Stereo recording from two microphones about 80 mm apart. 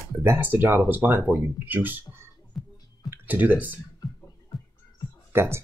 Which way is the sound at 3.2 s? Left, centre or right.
Right.